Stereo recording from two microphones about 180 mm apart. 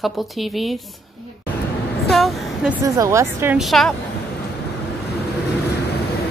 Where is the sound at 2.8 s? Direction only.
15° right (ahead or behind).